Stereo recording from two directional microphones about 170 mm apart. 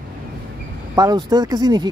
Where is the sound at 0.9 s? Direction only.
25° right (ahead or behind).